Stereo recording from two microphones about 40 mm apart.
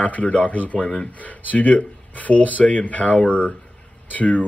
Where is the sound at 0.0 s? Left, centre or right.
Left.